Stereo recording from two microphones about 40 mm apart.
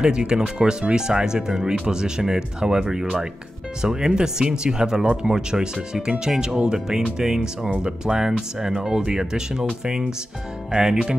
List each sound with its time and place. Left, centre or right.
0.0 s speech: right